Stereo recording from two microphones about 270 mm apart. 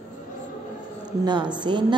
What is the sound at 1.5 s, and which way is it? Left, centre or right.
Speech, centre.